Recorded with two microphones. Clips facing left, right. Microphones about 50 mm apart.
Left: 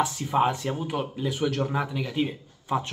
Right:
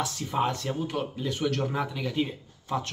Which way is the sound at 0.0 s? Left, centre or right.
Centre.